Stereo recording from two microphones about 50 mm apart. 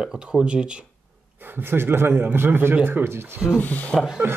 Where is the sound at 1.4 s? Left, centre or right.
Right.